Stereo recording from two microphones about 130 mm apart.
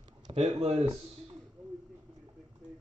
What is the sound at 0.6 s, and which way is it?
Speech, 55° right (ahead or behind).